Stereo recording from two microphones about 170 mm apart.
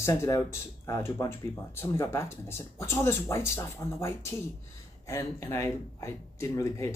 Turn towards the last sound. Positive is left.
turn(degrees=15)  # may be behind; listen again after turning